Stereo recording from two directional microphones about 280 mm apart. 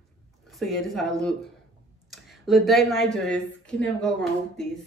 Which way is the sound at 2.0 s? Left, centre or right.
Centre.